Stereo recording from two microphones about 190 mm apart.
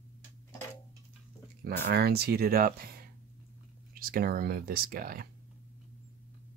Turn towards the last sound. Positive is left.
turn(degrees=-50)  # may be behind; listen again after turning